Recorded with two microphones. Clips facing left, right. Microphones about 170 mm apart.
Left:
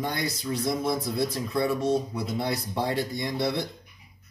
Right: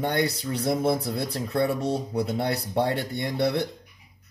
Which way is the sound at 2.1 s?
65° right (ahead or behind).